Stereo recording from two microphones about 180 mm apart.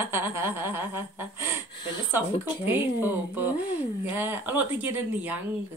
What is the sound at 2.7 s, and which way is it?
Speech, 10° right (ahead or behind).